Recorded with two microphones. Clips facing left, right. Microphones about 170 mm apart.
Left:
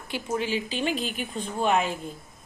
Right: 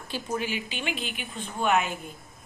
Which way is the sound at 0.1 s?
20° left (ahead or behind).